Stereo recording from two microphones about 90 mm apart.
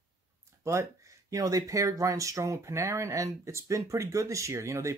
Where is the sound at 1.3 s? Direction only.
40° right (ahead or behind).